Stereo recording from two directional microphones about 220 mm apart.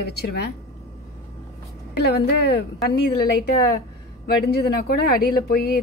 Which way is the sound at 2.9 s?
45° left (ahead or behind).